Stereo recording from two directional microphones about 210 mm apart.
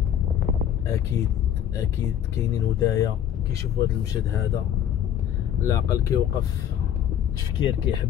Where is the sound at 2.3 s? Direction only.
15° left (ahead or behind).